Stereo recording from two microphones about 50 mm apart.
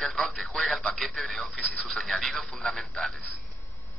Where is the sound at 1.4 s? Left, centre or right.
Left.